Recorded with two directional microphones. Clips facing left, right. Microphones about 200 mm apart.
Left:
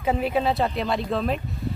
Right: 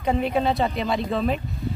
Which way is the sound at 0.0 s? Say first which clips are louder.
Right 1 dB; centre (ahead or behind).